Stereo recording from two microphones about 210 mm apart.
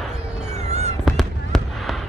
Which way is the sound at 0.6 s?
30° right (ahead or behind).